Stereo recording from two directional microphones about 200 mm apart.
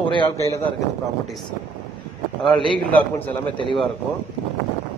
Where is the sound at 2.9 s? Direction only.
10° left (ahead or behind).